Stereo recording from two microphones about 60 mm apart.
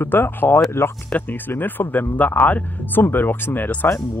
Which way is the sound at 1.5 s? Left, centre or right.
Left.